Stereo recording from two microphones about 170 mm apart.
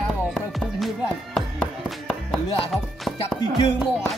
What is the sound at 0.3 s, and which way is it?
Music, centre (ahead or behind).